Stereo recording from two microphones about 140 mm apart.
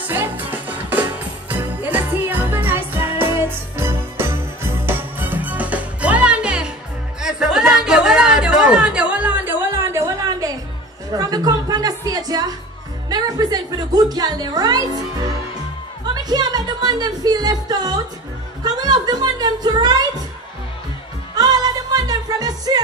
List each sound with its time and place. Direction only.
0.1 s music: 10° right (ahead or behind)
1.5 s jingle bell: 10° right (ahead or behind)
4.8 s music: 15° right (ahead or behind)
7.2 s a sound: 5° right (ahead or behind); by 10.5 s 20° right (ahead or behind)
11.1 s music: 25° right (ahead or behind)
13.1 s a woman's voice: 30° right (ahead or behind)
18.6 s music: 30° right (ahead or behind)
21.4 s music: 30° right (ahead or behind)